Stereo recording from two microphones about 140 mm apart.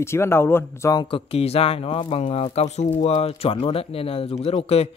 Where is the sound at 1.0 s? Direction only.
40° left (ahead or behind).